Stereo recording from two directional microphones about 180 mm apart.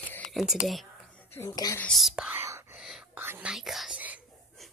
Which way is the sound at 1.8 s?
Centre (ahead or behind).